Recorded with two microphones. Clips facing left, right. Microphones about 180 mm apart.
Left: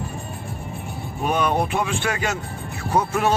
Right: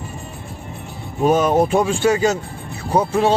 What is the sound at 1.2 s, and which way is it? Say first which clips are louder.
Speech: right 7 dB; 40° right (ahead or behind).